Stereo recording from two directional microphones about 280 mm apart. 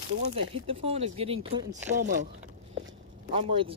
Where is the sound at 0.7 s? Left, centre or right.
Centre.